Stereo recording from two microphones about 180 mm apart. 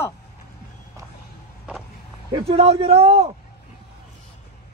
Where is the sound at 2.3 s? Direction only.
30° right (ahead or behind).